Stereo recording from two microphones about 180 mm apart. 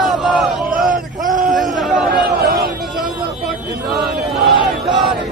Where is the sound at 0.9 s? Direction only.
45° right (ahead or behind).